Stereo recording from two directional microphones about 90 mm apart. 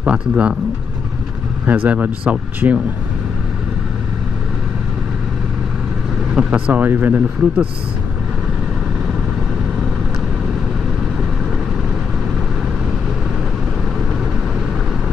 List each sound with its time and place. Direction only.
0.0 s speech: 10° right (ahead or behind)
1.7 s speech: 15° right (ahead or behind)
6.3 s speech: 15° right (ahead or behind)